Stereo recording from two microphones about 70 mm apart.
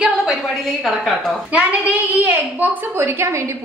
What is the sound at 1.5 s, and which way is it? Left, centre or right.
A child's voice, centre.